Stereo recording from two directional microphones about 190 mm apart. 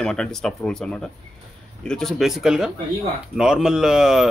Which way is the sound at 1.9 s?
Centre (ahead or behind).